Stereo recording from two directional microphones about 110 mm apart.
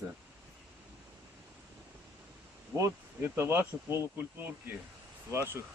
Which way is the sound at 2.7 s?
25° right (ahead or behind).